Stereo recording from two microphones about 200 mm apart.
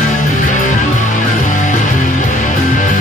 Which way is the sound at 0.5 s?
40° left (ahead or behind).